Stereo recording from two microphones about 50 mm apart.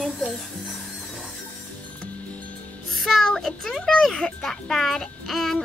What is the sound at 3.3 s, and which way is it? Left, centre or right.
A child's voice, centre.